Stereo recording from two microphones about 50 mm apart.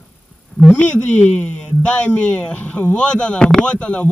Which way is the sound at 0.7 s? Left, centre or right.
Left.